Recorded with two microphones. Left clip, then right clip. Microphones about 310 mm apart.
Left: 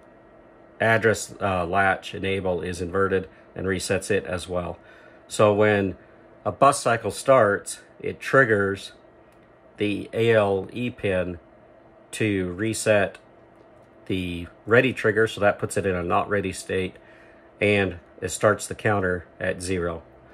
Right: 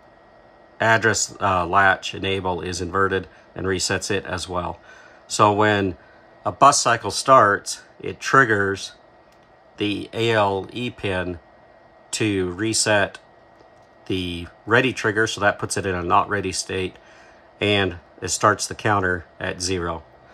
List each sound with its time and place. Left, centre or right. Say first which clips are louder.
0.8 s speech: right 2 dB; centre